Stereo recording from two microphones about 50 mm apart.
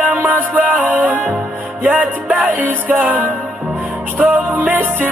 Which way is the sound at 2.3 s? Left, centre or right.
Right.